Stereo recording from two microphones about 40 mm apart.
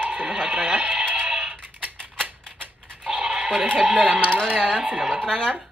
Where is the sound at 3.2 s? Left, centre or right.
Right.